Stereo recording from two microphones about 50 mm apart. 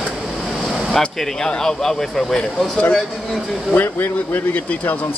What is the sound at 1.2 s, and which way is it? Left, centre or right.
Speech, centre.